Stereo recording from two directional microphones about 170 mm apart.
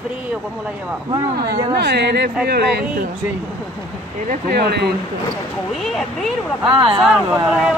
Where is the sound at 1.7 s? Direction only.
75° right (ahead or behind).